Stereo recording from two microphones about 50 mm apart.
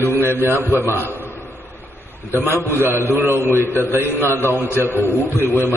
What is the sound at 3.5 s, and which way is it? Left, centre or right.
Speech, left.